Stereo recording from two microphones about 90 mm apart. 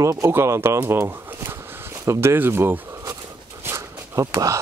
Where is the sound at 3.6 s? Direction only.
30° right (ahead or behind).